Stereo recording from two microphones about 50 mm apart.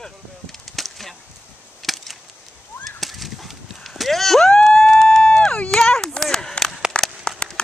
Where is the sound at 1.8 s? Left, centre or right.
Centre.